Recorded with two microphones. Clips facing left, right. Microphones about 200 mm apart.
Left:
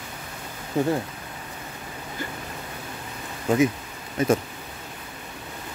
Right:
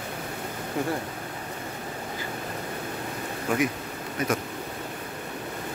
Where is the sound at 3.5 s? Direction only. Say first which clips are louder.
Left 6 dB; 25° left (ahead or behind).